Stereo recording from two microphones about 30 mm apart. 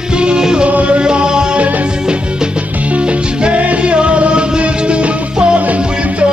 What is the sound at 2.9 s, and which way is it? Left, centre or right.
Music, right.